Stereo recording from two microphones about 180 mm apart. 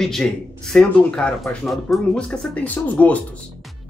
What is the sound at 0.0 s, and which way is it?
Speech, 5° left (ahead or behind).